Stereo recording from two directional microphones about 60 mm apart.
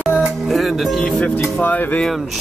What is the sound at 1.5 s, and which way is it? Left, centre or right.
Speech, left.